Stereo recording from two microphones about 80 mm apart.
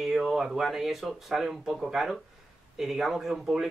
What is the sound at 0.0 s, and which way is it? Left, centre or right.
Speech, centre.